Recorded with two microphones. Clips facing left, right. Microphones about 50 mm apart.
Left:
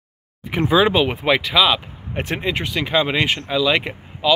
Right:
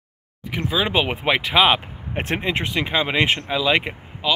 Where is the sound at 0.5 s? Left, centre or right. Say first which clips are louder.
Left 7 dB; left.